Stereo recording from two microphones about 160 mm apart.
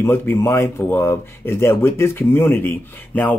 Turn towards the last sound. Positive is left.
turn(degrees=10)  # may be behind; listen again after turning